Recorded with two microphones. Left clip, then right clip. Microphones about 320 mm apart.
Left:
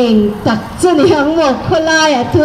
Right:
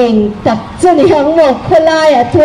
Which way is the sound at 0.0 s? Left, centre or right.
Right.